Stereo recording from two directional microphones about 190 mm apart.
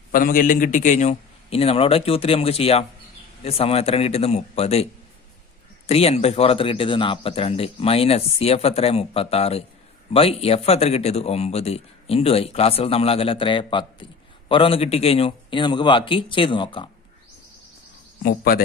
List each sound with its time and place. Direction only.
0.1 s speech: 45° left (ahead or behind)
5.9 s a man's voice: 35° left (ahead or behind)
18.2 s speech: 50° left (ahead or behind)